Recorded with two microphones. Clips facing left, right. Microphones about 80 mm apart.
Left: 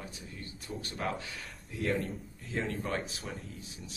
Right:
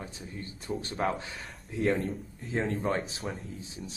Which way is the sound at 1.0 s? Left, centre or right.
Right.